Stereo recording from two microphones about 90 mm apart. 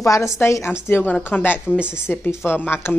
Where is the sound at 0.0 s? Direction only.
35° left (ahead or behind).